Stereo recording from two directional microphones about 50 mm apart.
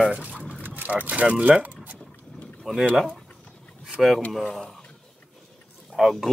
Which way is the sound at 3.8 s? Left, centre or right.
Centre.